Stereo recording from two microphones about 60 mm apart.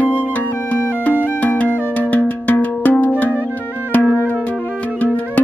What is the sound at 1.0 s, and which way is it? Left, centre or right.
Music, left.